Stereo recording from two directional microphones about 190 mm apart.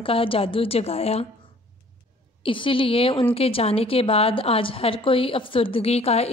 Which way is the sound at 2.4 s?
25° left (ahead or behind).